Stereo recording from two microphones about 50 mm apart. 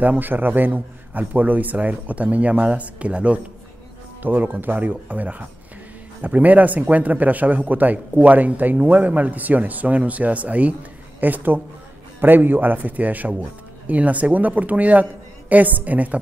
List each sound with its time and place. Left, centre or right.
0.0 s speech: right
4.2 s speech: right